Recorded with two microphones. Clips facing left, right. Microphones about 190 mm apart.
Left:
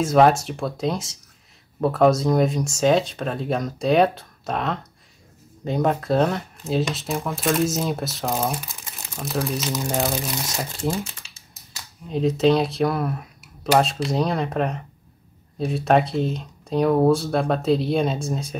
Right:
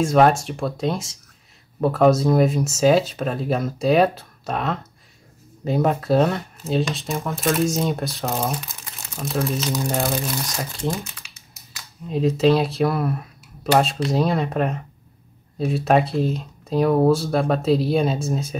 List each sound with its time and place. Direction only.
0.0 s speech: centre (ahead or behind)
10.9 s typing: 30° left (ahead or behind)
12.1 s speech: centre (ahead or behind)